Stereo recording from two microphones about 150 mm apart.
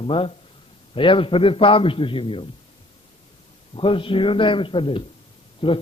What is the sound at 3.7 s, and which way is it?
A man's voice, 35° left (ahead or behind).